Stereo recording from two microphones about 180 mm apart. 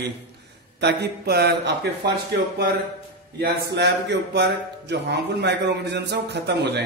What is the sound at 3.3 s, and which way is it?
Speech, 65° right (ahead or behind).